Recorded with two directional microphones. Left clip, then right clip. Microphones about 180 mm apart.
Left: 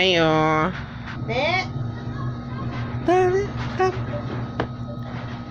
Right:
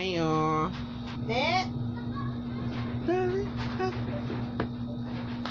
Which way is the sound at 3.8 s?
65° left (ahead or behind).